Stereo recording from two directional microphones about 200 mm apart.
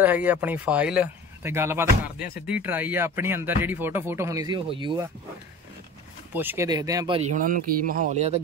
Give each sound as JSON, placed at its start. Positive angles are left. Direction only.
{"t": 0.0, "sound": "speech", "side_deg": -10}
{"t": 6.3, "sound": "speech", "side_deg": -10}
{"t": 7.2, "sound": "speech", "side_deg": -40}